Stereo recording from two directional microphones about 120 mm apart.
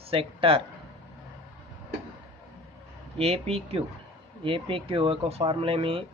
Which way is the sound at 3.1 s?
55° right (ahead or behind).